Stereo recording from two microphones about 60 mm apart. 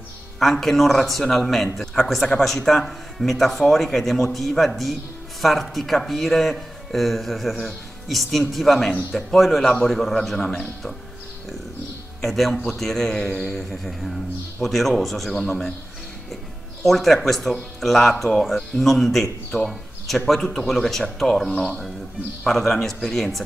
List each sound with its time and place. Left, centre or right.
0.4 s speech: centre
12.2 s speech: centre
16.8 s speech: centre
21.5 s speech: centre
22.4 s speech: centre